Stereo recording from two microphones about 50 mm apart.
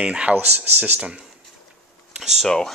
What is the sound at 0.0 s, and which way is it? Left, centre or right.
Speech, right.